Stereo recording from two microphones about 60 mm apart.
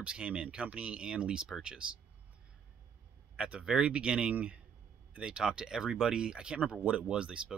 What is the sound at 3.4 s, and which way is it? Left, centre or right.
Speech, centre.